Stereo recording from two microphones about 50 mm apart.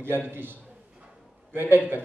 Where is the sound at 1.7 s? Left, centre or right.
Right.